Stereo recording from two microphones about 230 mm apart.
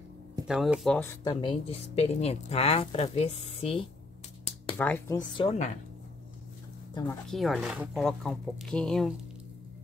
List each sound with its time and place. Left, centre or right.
0.5 s speech: centre; by 3.9 s left
4.7 s speech: centre
6.9 s speech: centre
7.2 s speech: centre